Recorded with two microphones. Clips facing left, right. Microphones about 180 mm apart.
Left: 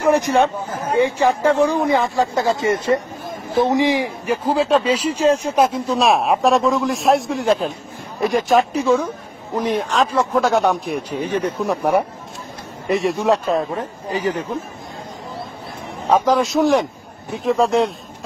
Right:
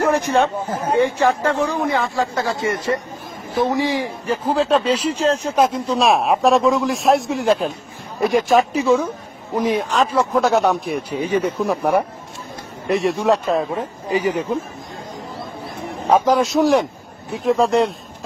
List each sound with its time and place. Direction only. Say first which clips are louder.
0.0 s speech: left 1 dB; 15° left (ahead or behind); by 11.5 s 10° right (ahead or behind)
11.5 s speech: even; 5° left (ahead or behind)
16.1 s speech: right 1 dB; 10° right (ahead or behind)